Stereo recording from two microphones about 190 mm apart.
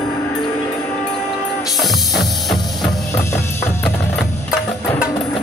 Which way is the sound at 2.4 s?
Centre (ahead or behind).